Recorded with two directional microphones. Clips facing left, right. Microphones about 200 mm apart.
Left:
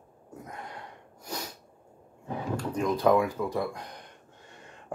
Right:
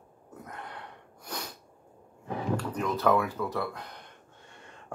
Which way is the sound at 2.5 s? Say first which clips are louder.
Left 4 dB; 15° left (ahead or behind).